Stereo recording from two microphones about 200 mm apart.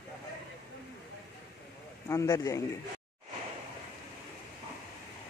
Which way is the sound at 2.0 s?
15° left (ahead or behind).